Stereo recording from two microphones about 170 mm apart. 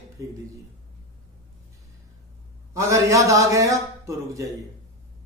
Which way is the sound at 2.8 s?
20° right (ahead or behind).